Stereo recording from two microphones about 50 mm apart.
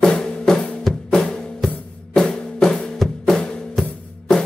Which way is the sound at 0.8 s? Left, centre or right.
Centre.